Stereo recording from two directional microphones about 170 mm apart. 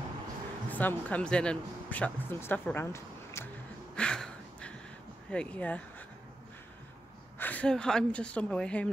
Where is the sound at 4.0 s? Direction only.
5° left (ahead or behind).